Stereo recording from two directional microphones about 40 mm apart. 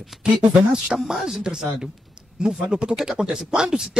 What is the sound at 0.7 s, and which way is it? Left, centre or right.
Speech, centre.